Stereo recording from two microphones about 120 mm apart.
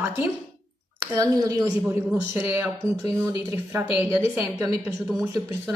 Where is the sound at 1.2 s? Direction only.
30° right (ahead or behind).